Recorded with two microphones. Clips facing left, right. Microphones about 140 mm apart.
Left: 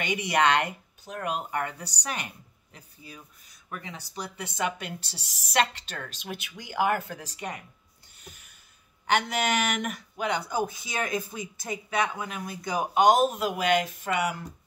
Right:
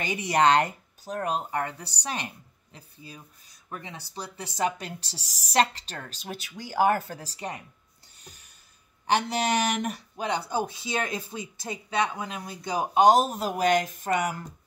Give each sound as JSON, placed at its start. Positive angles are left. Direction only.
{"t": 0.0, "sound": "speech", "side_deg": -35}
{"t": 8.2, "sound": "a sound", "side_deg": -35}
{"t": 9.0, "sound": "speech", "side_deg": -35}